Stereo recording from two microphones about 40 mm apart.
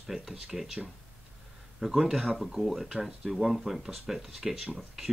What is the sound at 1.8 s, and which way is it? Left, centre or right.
Speech, centre.